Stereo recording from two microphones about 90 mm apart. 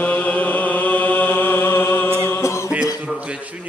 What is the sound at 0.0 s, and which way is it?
Chant, 15° left (ahead or behind).